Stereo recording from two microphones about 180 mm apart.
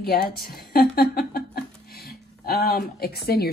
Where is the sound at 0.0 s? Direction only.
60° left (ahead or behind).